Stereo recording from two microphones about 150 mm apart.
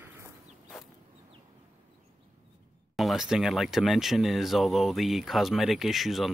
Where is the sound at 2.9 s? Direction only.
Centre (ahead or behind).